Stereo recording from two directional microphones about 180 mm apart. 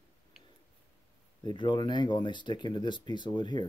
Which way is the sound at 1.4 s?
25° left (ahead or behind).